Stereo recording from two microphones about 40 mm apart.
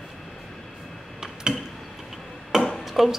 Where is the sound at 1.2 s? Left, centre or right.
Right.